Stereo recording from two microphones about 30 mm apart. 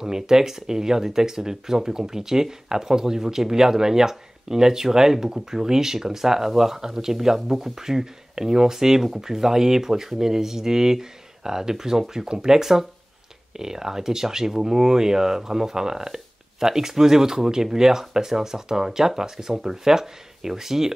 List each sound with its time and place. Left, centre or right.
0.0 s speech: centre